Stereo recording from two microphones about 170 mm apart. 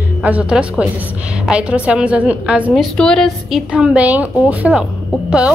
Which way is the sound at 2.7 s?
5° left (ahead or behind).